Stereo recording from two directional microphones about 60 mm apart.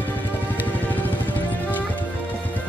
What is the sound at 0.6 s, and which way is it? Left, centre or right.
Music, left.